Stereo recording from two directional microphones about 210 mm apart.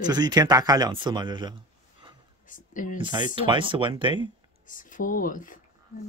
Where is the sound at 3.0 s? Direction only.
20° right (ahead or behind).